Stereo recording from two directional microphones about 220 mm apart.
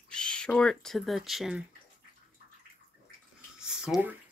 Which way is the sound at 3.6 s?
5° right (ahead or behind).